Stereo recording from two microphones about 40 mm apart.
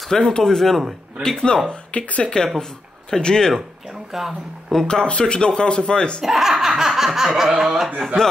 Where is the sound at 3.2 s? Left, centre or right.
Centre.